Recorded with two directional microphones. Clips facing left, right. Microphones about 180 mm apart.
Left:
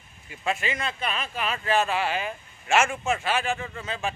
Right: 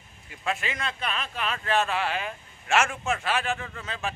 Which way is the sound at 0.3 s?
Centre (ahead or behind).